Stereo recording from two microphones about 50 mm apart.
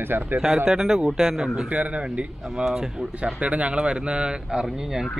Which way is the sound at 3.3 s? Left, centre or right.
Right.